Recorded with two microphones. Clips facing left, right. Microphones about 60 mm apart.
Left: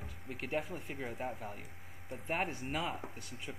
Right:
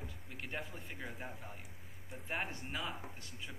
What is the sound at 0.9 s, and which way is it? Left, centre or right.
Speech, centre.